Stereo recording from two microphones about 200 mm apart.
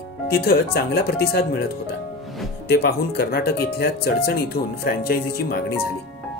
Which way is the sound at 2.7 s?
50° left (ahead or behind).